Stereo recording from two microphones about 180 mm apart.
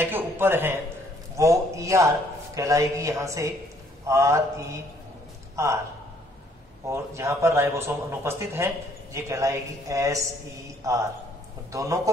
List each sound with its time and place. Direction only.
0.0 s a man's voice: 10° right (ahead or behind)
6.9 s a man's voice: 15° right (ahead or behind)